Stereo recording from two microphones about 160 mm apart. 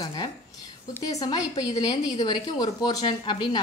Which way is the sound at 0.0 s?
30° left (ahead or behind).